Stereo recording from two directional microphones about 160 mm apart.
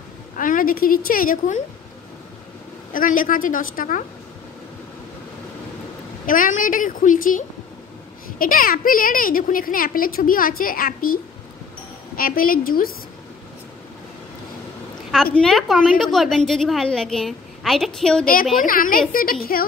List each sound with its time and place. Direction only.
0.4 s a woman's voice: 60° left (ahead or behind)
2.9 s a woman's voice: 60° left (ahead or behind)
6.2 s a woman's voice: 55° left (ahead or behind)
12.2 s a woman's voice: 65° left (ahead or behind)
15.3 s a woman's voice: centre (ahead or behind)
18.2 s a woman's voice: 65° left (ahead or behind)